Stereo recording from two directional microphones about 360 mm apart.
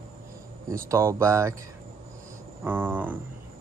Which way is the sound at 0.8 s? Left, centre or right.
Centre.